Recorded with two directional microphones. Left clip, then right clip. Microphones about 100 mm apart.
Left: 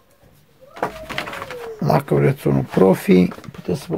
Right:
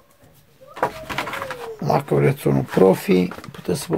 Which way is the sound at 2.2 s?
20° left (ahead or behind).